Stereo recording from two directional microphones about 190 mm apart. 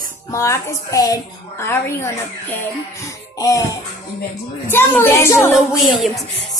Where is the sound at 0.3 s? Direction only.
15° left (ahead or behind).